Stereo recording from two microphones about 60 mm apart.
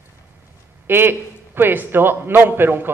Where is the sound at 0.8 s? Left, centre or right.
Right.